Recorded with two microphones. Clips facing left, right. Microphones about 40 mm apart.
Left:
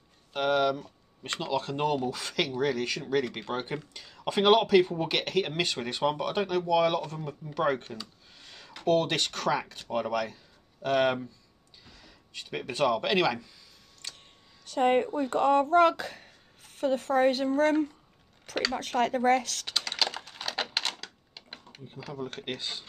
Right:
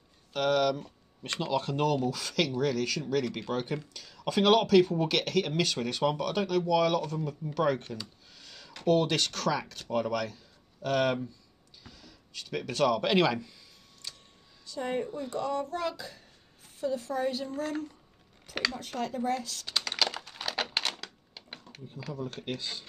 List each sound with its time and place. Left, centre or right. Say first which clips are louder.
0.3 s speech: left 1 dB; centre
11.8 s a sound: right 2 dB; centre
13.0 s speech: right 1 dB; centre
14.7 s speech: left 8 dB; left
18.8 s speech: left 7 dB; left
19.7 s typing: even; centre
20.8 s typewriter: even; centre
22.2 s speech: left 1 dB; left